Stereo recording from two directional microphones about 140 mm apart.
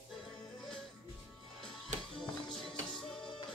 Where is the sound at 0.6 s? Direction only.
Centre (ahead or behind).